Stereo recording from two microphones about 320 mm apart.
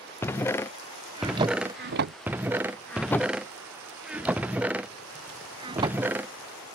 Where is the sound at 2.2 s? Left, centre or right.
Centre.